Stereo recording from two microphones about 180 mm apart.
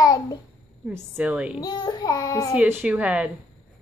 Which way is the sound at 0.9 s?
10° right (ahead or behind).